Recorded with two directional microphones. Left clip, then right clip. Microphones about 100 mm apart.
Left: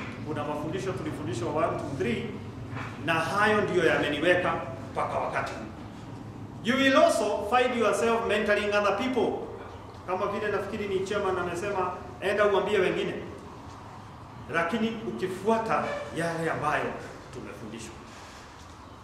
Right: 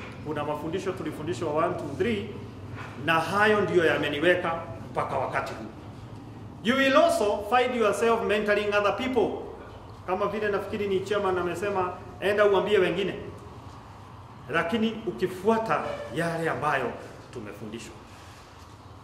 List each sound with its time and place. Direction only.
0.3 s a man's voice: 30° left (ahead or behind)
6.6 s a man's voice: 25° left (ahead or behind)
14.5 s a man's voice: 25° left (ahead or behind)